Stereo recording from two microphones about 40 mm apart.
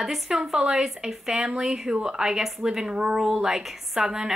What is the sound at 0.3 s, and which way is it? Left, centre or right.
A woman's voice, centre.